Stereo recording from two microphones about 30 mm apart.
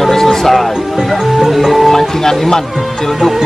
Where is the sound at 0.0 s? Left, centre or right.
Centre.